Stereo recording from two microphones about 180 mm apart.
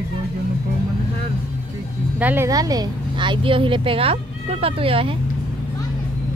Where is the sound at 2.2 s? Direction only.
10° right (ahead or behind); by 5.1 s 30° right (ahead or behind).